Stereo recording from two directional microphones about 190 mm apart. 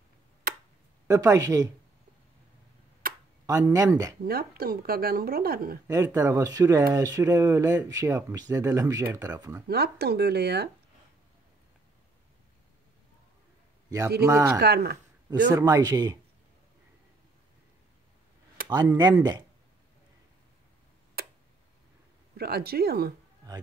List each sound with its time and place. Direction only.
1.0 s speech: 15° right (ahead or behind)
3.0 s a sound: 50° right (ahead or behind)
3.6 s speech: 15° right (ahead or behind)
4.3 s speech: 50° right (ahead or behind)
5.9 s speech: 15° right (ahead or behind)
9.7 s speech: 55° right (ahead or behind)
14.2 s speech: 10° right (ahead or behind)
14.6 s speech: 55° right (ahead or behind)
15.5 s speech: 20° right (ahead or behind)
18.7 s speech: 20° right (ahead or behind)
21.2 s tick: 55° right (ahead or behind)
22.4 s speech: 55° right (ahead or behind)